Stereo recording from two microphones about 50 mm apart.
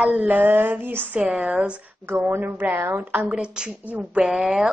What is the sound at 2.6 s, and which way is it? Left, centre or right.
Speech, right.